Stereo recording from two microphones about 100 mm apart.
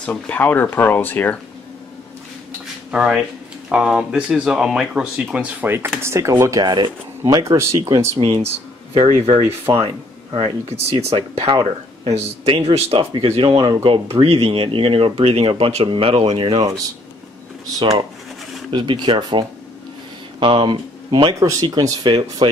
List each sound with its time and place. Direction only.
0.0 s speech: 15° left (ahead or behind)
2.9 s speech: 10° right (ahead or behind); by 6.6 s 30° right (ahead or behind)
6.6 s speech: 45° right (ahead or behind)
8.2 s speech: 80° right
9.7 s speech: 50° right (ahead or behind)
10.3 s speech: 75° right (ahead or behind)
13.1 s speech: 65° right (ahead or behind)
18.7 s speech: 50° right (ahead or behind)
20.3 s speech: 60° right (ahead or behind)
21.4 s speech: 35° right (ahead or behind)
22.0 s speech: 50° right (ahead or behind)